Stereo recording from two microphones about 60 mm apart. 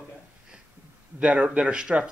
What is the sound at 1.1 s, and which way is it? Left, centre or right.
Speech, right.